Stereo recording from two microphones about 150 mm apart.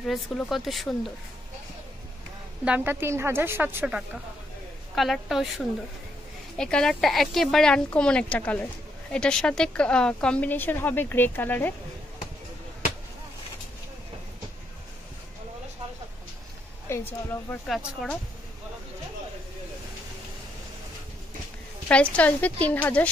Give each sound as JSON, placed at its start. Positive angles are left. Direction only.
{"t": 0.0, "sound": "speech", "side_deg": 0}
{"t": 2.6, "sound": "a woman's voice", "side_deg": -10}
{"t": 16.9, "sound": "a woman's voice", "side_deg": 15}
{"t": 17.6, "sound": "speech", "side_deg": 0}
{"t": 21.8, "sound": "a woman's voice", "side_deg": 10}